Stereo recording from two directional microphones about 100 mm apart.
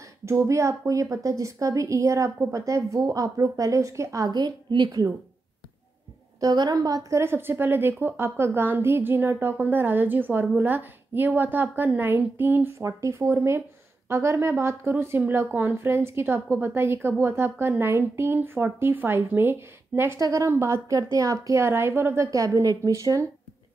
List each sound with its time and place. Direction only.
0.2 s a woman's voice: 30° right (ahead or behind)
6.4 s a woman's voice: 40° right (ahead or behind)